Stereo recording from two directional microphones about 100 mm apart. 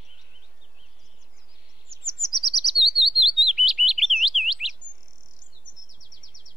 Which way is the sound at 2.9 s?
5° right (ahead or behind).